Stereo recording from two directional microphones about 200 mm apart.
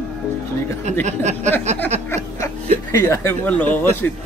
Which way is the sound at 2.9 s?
15° left (ahead or behind).